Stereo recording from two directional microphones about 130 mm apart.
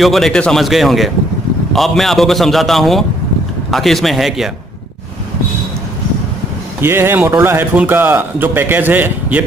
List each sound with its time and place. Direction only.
0.0 s a man's voice: centre (ahead or behind)
6.8 s a man's voice: 20° right (ahead or behind)